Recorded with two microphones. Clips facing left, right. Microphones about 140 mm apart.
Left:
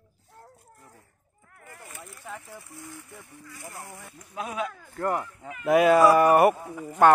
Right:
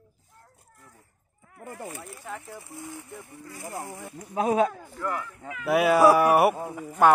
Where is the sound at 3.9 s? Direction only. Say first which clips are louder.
Right 6 dB; 20° right (ahead or behind).